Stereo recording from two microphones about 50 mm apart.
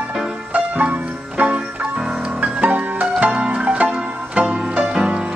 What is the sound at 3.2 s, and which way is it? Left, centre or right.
Zither, right.